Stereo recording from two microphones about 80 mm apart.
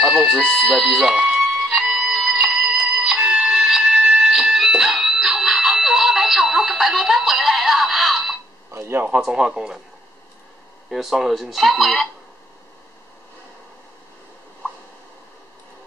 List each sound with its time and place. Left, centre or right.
0.0 s speech: centre
0.6 s music: centre
8.7 s a sound: right
9.0 s speech: centre
10.9 s speech: centre